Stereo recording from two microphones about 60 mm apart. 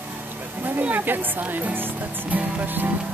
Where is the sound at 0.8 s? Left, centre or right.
Right.